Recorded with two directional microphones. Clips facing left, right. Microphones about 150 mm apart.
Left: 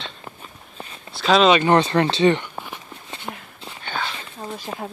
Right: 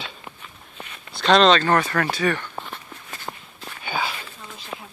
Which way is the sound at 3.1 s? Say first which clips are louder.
Left 2 dB; 20° left (ahead or behind).